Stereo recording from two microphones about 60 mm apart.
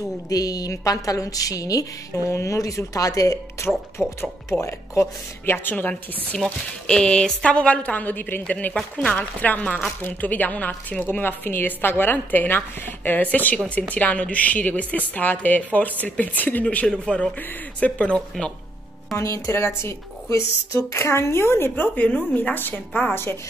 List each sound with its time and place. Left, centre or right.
0.3 s a woman's voice: left
2.2 s speech: left
4.0 s speech: centre
4.6 s speech: left
5.4 s a woman's voice: left
6.3 s a woman's voice: centre
16.6 s speech: centre
17.4 s a woman's voice: left
18.1 s speech: centre
19.1 s speech: left
21.8 s a woman's voice: left